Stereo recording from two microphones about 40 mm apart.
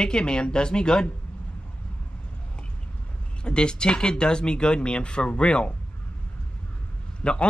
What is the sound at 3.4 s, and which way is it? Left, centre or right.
Speech, left.